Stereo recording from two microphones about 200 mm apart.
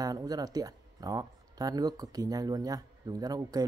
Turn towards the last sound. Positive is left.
turn(degrees=-20)  # may be behind; listen again after turning